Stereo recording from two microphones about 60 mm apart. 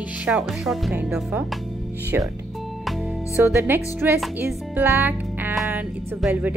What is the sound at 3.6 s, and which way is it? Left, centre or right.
Speech, right.